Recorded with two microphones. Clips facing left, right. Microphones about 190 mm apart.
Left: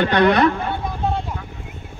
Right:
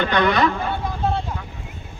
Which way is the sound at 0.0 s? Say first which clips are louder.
Left 3 dB; 60° left (ahead or behind).